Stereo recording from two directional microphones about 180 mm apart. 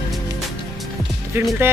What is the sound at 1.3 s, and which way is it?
Speech, 15° right (ahead or behind).